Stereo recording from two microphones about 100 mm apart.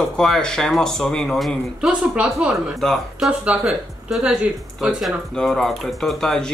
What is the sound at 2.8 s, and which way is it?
Speech, 5° left (ahead or behind).